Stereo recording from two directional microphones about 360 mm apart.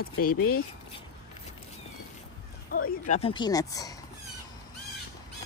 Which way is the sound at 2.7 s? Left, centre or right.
Left.